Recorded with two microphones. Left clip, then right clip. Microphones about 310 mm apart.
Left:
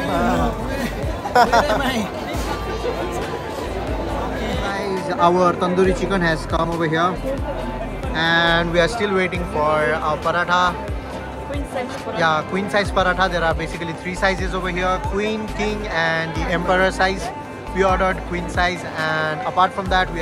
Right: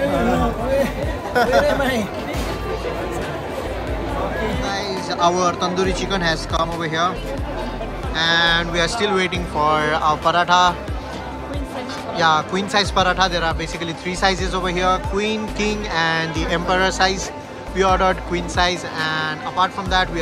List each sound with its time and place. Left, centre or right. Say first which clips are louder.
1.3 s speech: left 4 dB; centre
1.7 s speech: right 1 dB; centre
4.6 s speech: even; centre
8.2 s speech: even; centre
12.2 s speech: right 2 dB; centre